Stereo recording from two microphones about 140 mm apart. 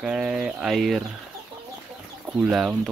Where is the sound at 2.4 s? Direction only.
5° right (ahead or behind).